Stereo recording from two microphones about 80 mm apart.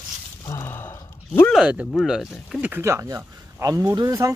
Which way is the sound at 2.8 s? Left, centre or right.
Right.